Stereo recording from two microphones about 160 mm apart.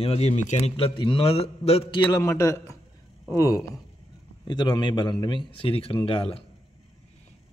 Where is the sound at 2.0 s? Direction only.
20° left (ahead or behind).